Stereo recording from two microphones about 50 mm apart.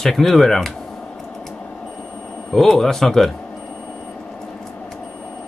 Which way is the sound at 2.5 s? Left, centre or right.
Centre.